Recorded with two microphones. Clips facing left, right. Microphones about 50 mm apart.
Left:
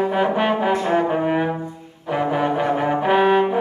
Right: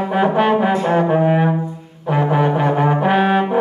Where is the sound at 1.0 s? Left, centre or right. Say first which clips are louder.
Right 4 dB; centre.